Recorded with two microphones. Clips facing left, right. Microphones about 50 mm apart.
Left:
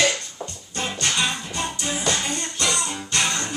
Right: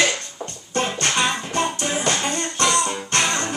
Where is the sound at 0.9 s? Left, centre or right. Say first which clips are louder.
Left 1 dB; right.